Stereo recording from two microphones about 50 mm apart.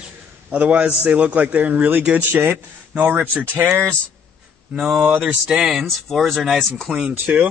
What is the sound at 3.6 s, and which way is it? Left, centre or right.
Speech, right.